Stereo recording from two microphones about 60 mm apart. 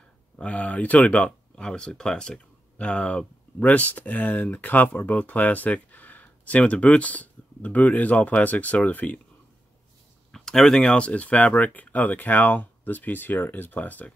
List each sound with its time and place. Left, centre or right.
0.4 s speech: left
10.3 s speech: centre; by 14.1 s left